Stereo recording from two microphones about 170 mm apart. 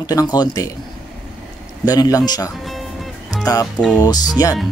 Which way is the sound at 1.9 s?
20° left (ahead or behind).